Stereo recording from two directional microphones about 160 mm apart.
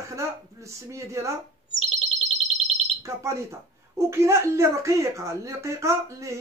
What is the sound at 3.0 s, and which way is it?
A woman's voice, 20° right (ahead or behind).